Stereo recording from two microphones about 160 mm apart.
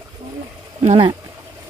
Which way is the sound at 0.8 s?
40° right (ahead or behind).